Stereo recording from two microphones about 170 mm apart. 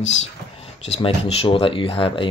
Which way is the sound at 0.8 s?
35° left (ahead or behind).